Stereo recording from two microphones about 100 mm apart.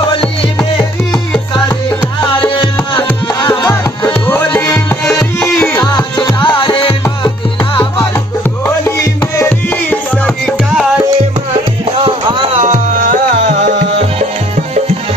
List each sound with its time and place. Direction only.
2.4 s music: 55° left (ahead or behind)
4.6 s music: 30° left (ahead or behind)
5.9 s music: 50° left (ahead or behind)
8.6 s music: 25° left (ahead or behind)